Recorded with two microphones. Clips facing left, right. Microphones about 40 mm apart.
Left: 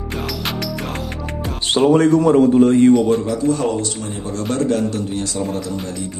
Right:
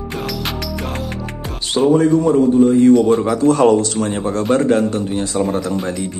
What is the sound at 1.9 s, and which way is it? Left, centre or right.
Speech, left.